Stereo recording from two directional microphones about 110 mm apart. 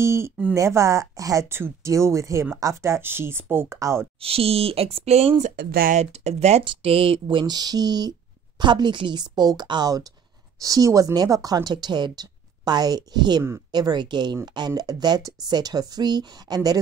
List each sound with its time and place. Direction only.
0.0 s speech: 25° right (ahead or behind)
4.2 s speech: 60° right (ahead or behind)
5.9 s speech: 80° right
6.6 s speech: 55° right (ahead or behind); by 16.8 s 35° right (ahead or behind)